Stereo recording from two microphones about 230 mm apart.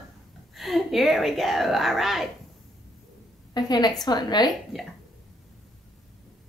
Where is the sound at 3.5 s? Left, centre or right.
Centre.